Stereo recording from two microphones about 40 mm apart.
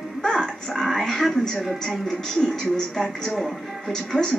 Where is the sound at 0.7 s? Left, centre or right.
Centre.